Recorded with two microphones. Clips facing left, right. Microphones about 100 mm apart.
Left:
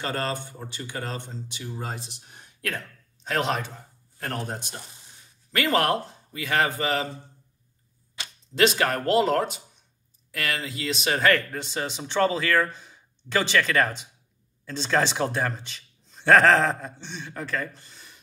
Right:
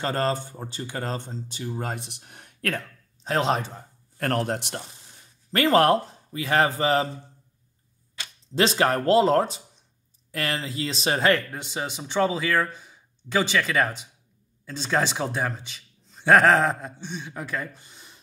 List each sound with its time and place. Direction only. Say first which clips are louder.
0.0 s speech: right 4 dB; 35° right (ahead or behind)
1.8 s speech: right 3 dB; 60° right (ahead or behind)
3.3 s speech: right 2 dB; 30° right (ahead or behind)
4.2 s speech: right 6 dB; 60° right (ahead or behind)
5.5 s speech: right 4 dB; 35° right (ahead or behind)
8.5 s speech: right 1 dB; 30° right (ahead or behind)
11.5 s speech: left 1 dB; 10° right (ahead or behind)